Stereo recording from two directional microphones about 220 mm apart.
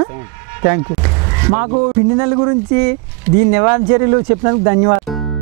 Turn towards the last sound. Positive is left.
turn(degrees=-15)  # may be behind; listen again after turning